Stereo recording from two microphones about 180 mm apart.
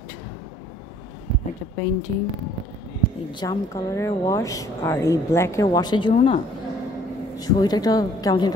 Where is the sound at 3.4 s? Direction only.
20° left (ahead or behind).